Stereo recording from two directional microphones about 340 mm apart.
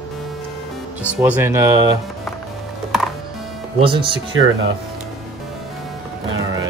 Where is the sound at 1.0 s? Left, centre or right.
Centre.